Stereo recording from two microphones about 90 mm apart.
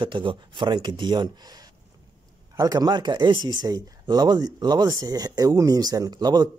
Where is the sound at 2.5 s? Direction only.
45° right (ahead or behind).